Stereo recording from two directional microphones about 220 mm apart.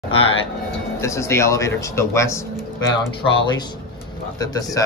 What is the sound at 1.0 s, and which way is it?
Speech, 15° left (ahead or behind).